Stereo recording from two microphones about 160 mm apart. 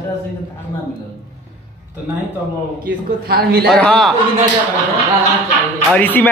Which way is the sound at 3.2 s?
75° right (ahead or behind).